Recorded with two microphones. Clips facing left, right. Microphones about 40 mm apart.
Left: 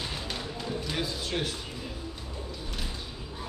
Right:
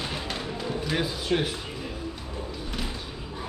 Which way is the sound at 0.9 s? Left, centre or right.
Centre.